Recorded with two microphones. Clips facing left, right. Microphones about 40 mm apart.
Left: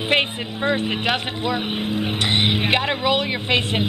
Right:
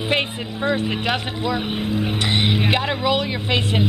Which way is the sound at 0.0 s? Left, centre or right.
Left.